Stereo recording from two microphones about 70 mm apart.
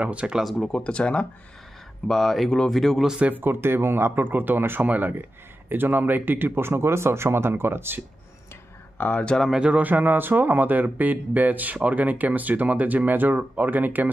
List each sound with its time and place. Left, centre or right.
0.0 s speech: centre
0.4 s speech: centre
2.0 s speech: centre
3.1 s a man's voice: right
8.9 s speech: left
9.5 s speech: centre